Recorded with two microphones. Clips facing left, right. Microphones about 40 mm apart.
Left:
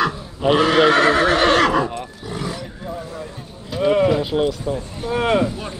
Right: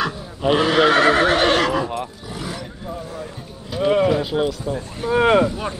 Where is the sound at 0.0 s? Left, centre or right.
Centre.